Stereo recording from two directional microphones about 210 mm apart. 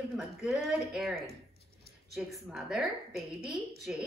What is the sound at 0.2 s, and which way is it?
Speech, centre (ahead or behind).